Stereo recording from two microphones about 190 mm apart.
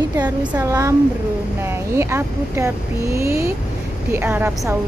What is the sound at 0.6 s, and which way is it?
A woman's voice, 15° right (ahead or behind).